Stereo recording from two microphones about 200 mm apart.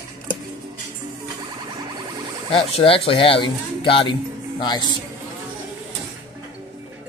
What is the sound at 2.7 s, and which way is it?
Speech, 25° left (ahead or behind).